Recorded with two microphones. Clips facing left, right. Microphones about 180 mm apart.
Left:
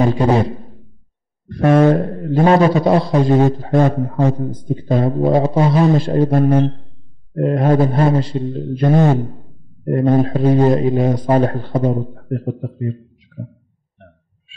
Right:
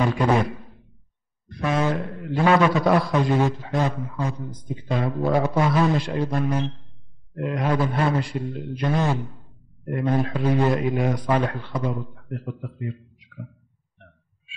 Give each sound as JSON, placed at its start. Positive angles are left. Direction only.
{"t": 0.0, "sound": "a sound", "side_deg": 30}
{"t": 1.5, "sound": "a man's voice", "side_deg": 55}
{"t": 8.8, "sound": "speech", "side_deg": 45}